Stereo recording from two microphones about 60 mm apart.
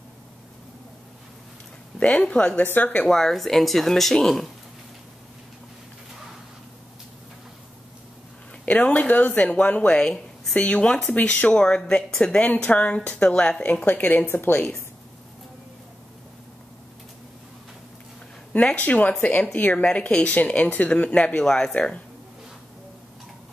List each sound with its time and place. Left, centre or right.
2.0 s speech: centre
3.1 s speech: centre
8.6 s a woman's voice: left
13.7 s speech: left
18.8 s a woman's voice: left; by 21.7 s centre
21.7 s speech: left